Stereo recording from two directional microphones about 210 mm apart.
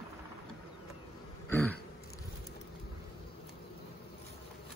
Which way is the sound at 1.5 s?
10° left (ahead or behind).